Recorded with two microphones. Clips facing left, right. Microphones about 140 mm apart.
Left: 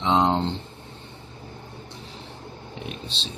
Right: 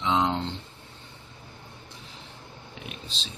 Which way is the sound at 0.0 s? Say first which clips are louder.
Left 4 dB; 35° left (ahead or behind).